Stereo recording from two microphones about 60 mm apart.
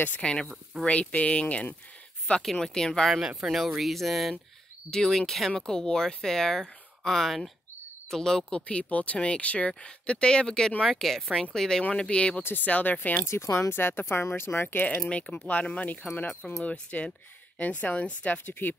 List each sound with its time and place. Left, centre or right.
0.2 s a woman's voice: centre
2.6 s speech: centre
3.1 s speech: centre
4.9 s a woman's voice: centre; by 13.2 s left
13.2 s speech: left
15.0 s a woman's voice: centre